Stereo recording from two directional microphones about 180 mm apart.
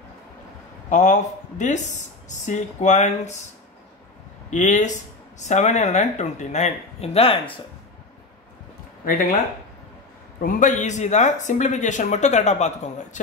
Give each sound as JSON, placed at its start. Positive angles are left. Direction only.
{"t": 0.8, "sound": "speech", "side_deg": 40}
{"t": 4.5, "sound": "speech", "side_deg": 45}
{"t": 9.0, "sound": "speech", "side_deg": 55}
{"t": 10.4, "sound": "speech", "side_deg": 45}